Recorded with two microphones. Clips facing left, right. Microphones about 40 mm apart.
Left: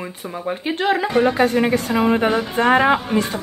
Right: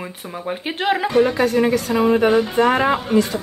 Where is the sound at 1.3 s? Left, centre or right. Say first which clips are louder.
Even; left; by 3.1 s centre.